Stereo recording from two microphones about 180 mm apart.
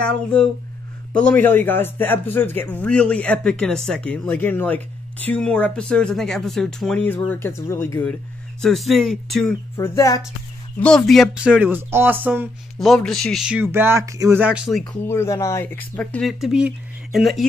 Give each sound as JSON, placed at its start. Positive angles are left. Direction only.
{"t": 0.0, "sound": "speech", "side_deg": 5}
{"t": 9.8, "sound": "speech", "side_deg": 20}
{"t": 10.8, "sound": "speech", "side_deg": 5}
{"t": 12.7, "sound": "speech", "side_deg": 0}
{"t": 14.9, "sound": "speech", "side_deg": 15}